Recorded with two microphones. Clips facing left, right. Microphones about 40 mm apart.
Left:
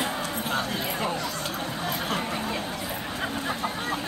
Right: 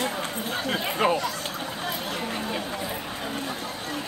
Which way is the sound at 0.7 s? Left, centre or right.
Right.